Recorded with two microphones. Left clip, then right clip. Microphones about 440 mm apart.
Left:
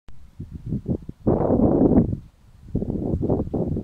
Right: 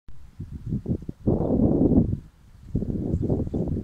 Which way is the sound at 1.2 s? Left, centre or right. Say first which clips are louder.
Left 4 dB; left.